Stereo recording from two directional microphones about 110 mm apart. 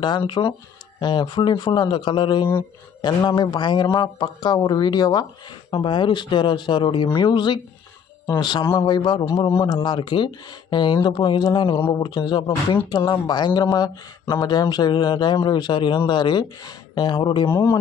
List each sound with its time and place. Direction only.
0.4 s speech: 35° left (ahead or behind)
5.7 s speech: 50° left (ahead or behind)
17.5 s speech: 20° left (ahead or behind)